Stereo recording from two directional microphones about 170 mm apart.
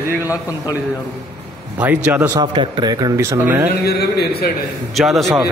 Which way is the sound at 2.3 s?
25° right (ahead or behind).